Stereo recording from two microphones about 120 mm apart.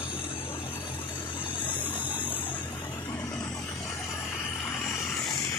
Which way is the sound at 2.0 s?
45° left (ahead or behind).